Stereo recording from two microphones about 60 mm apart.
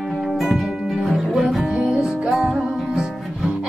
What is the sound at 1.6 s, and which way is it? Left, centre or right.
Music, centre.